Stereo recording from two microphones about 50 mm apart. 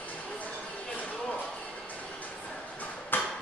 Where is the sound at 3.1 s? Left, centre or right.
Left.